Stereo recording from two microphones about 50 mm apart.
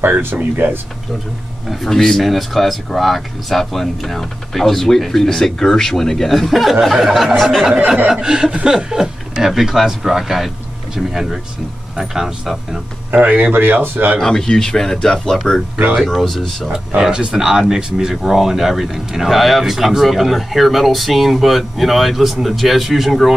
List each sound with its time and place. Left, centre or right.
0.0 s speech: right
1.7 s speech: centre
8.1 s speech: centre
13.1 s speech: right
13.5 s speech: right
14.2 s speech: centre
16.6 s speech: centre